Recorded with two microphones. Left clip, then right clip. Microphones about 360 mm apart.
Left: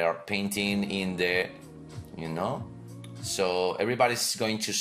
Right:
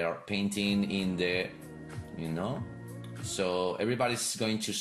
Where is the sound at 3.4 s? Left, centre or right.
Left.